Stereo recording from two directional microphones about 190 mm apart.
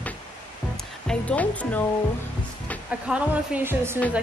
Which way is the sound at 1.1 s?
5° left (ahead or behind).